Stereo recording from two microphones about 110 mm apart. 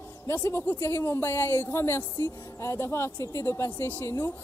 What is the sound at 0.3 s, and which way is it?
Speech, 25° left (ahead or behind).